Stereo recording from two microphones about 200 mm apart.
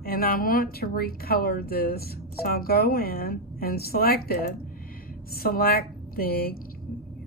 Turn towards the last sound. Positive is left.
turn(degrees=50)  # may be behind; listen again after turning